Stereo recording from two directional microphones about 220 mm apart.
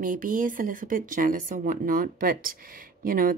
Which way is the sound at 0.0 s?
40° right (ahead or behind).